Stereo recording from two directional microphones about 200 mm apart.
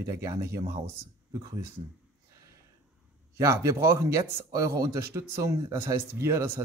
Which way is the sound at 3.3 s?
15° right (ahead or behind).